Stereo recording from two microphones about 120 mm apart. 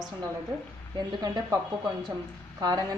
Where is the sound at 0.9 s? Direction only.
30° right (ahead or behind).